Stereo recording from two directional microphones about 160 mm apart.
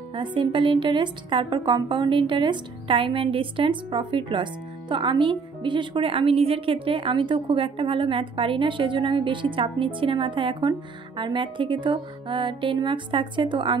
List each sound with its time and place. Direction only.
0.1 s a woman's voice: 30° right (ahead or behind)